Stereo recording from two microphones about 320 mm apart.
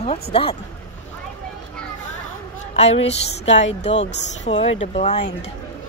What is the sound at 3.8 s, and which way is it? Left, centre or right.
Speech, left.